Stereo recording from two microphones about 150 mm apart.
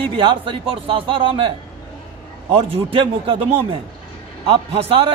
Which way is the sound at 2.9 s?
35° right (ahead or behind).